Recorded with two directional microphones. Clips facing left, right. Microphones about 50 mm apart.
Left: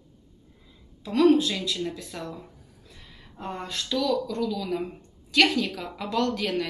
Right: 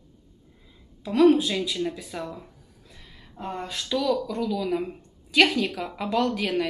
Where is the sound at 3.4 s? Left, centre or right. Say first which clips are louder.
Right 1 dB; centre.